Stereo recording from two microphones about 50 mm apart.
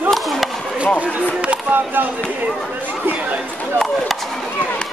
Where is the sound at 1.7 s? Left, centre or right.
Right.